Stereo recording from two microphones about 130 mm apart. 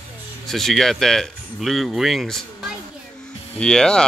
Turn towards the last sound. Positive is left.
turn(degrees=5)  # may be behind; listen again after turning